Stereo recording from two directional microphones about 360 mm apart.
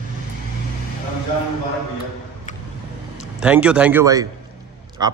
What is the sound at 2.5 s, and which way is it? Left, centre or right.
Vehicle, centre.